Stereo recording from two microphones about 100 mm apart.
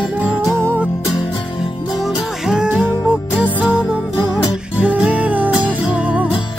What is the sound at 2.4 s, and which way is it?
Music, 5° right (ahead or behind).